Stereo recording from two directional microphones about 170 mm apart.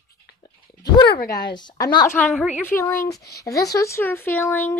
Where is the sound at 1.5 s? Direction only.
25° left (ahead or behind).